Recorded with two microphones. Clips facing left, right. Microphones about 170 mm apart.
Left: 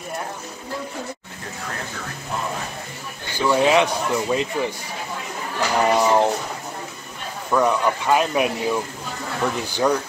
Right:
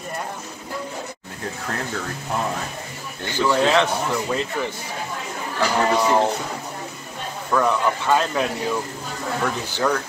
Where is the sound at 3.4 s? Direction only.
15° left (ahead or behind).